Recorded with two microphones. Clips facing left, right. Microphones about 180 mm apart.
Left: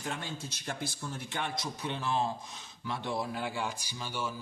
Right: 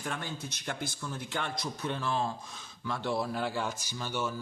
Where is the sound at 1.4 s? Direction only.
20° left (ahead or behind).